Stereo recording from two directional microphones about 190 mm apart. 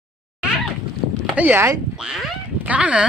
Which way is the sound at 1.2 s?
10° right (ahead or behind).